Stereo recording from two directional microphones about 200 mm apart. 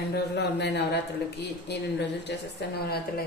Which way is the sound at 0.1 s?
55° left (ahead or behind).